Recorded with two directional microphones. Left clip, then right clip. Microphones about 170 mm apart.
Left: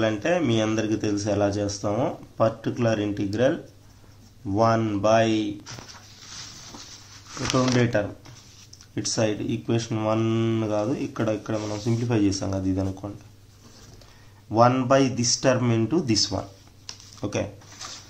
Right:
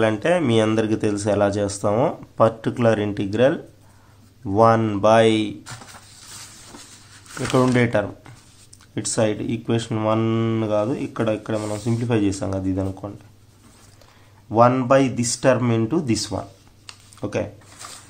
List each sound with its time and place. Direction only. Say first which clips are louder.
0.0 s a man's voice: right 4 dB; 30° right (ahead or behind)
7.5 s speech: right 4 dB; 25° right (ahead or behind)
14.5 s speech: right 3 dB; 20° right (ahead or behind)
16.3 s a sound: right 2 dB; 10° right (ahead or behind)